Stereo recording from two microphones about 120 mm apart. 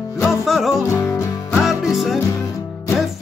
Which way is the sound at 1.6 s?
Centre (ahead or behind).